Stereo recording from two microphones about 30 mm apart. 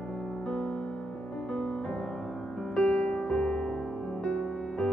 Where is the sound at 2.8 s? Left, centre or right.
Left.